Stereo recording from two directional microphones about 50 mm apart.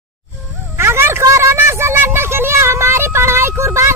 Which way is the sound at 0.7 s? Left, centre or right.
Right.